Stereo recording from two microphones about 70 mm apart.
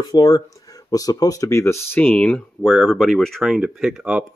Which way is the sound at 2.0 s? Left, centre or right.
Centre.